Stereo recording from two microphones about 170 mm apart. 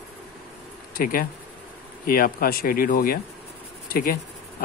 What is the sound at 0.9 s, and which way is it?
Speech, 55° left (ahead or behind).